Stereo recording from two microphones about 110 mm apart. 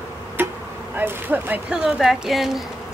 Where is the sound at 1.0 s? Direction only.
15° right (ahead or behind).